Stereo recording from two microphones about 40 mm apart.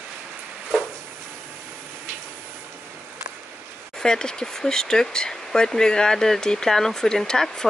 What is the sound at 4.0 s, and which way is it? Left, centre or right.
Speech, centre.